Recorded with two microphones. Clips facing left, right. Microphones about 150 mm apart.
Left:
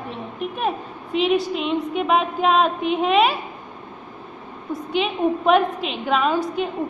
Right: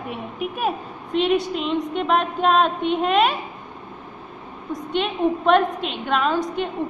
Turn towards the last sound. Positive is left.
turn(degrees=5)  # may be behind; listen again after turning